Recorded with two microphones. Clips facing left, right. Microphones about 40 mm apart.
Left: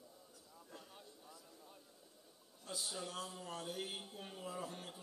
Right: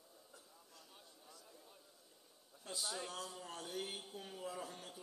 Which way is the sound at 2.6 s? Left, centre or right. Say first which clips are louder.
Right 1 dB; right.